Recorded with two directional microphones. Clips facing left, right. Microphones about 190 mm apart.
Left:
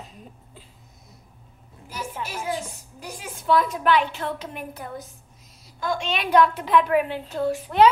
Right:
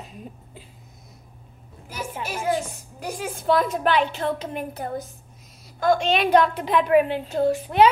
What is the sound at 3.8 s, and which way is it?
Speech, 25° right (ahead or behind).